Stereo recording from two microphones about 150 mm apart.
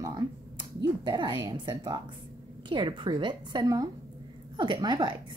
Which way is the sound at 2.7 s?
30° right (ahead or behind).